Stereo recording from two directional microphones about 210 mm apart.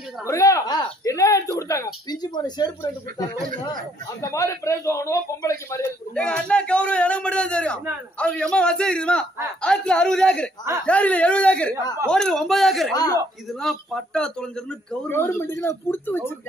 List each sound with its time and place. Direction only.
0.3 s a man's voice: 15° left (ahead or behind)
4.2 s a man's voice: 15° left (ahead or behind)
6.1 s a man's voice: 5° left (ahead or behind)
12.9 s a man's voice: 15° left (ahead or behind)
13.5 s a man's voice: centre (ahead or behind)